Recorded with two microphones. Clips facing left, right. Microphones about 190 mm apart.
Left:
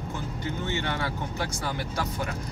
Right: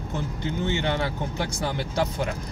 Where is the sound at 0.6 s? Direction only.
20° right (ahead or behind).